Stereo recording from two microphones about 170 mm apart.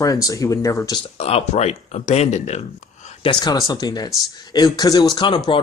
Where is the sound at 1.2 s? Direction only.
40° left (ahead or behind).